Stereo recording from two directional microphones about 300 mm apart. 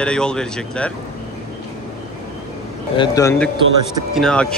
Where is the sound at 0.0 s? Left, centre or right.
Centre.